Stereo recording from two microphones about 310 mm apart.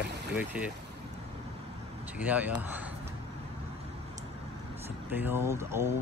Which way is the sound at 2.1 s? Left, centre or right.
Centre.